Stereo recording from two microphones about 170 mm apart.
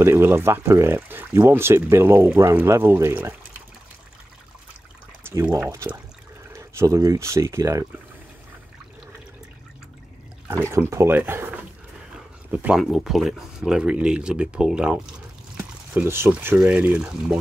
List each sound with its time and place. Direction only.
0.0 s speech: 15° right (ahead or behind)
5.3 s speech: 20° right (ahead or behind)
10.5 s speech: 15° right (ahead or behind)